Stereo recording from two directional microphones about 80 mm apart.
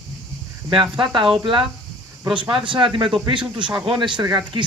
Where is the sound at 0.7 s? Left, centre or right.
Right.